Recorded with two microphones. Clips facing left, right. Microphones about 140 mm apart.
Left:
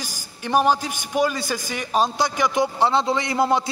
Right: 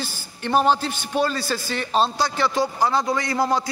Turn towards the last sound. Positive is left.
turn(degrees=20)  # may be behind; listen again after turning